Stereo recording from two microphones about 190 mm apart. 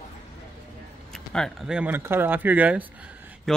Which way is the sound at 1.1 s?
Centre (ahead or behind).